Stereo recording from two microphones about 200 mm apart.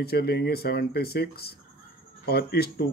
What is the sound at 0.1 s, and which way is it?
Speech, 50° left (ahead or behind).